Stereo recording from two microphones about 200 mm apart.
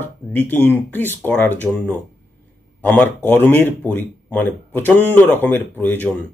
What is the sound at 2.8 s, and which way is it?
Speech, 10° left (ahead or behind).